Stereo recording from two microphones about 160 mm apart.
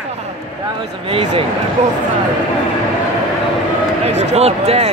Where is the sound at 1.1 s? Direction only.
35° right (ahead or behind).